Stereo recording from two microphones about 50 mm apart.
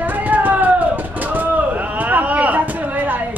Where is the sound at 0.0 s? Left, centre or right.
Right.